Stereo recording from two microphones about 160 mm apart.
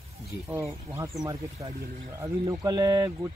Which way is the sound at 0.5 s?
15° right (ahead or behind).